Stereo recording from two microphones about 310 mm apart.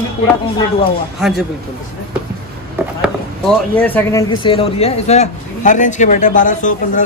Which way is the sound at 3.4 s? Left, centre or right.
Centre.